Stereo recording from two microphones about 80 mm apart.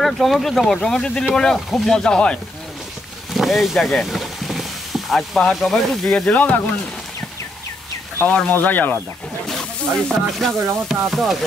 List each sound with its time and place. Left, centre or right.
0.0 s speech: centre
3.3 s sizzle: centre; by 6.7 s left
8.5 s speech: left
9.5 s speech: centre